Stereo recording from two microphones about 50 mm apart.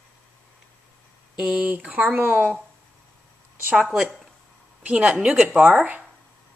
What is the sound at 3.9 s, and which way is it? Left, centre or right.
Speech, centre.